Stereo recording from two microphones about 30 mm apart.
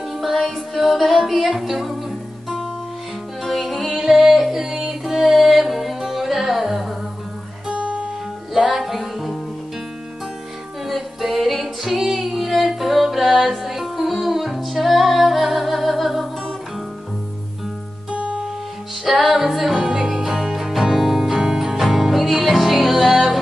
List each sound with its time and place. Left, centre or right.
0.2 s music: centre
3.4 s music: centre
7.7 s guitar: right
8.5 s music: centre
10.9 s music: centre
12.1 s female singing: centre
12.4 s music: centre
18.1 s music: right
19.0 s music: centre
19.9 s music: centre